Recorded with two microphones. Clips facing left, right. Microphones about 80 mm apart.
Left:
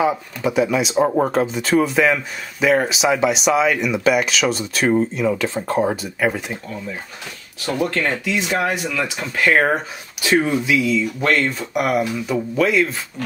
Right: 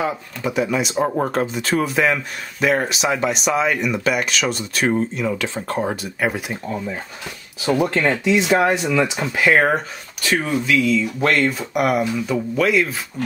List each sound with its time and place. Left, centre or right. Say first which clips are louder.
0.0 s speech: left 4 dB; centre
7.6 s speech: right 3 dB; centre
9.4 s speech: even; centre
10.2 s speech: left 3 dB; centre